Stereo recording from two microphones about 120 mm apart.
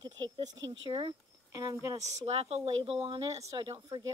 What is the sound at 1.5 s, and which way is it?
Speech, 30° right (ahead or behind).